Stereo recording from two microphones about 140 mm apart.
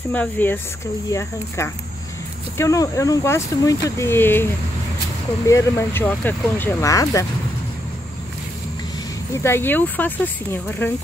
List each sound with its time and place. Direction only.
0.1 s speech: 10° left (ahead or behind)
2.5 s speech: 20° left (ahead or behind)
5.5 s speech: 20° left (ahead or behind)
9.3 s speech: 20° left (ahead or behind)